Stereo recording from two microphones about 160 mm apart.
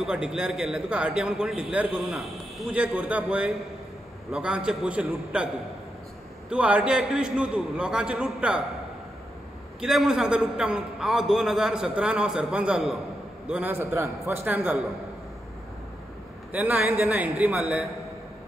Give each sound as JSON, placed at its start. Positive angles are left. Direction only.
{"t": 0.0, "sound": "a man's voice", "side_deg": -5}
{"t": 6.5, "sound": "a man's voice", "side_deg": -5}
{"t": 9.8, "sound": "a man's voice", "side_deg": 0}
{"t": 16.5, "sound": "a man's voice", "side_deg": -10}